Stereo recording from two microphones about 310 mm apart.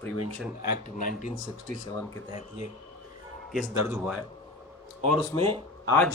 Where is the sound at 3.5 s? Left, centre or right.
Centre.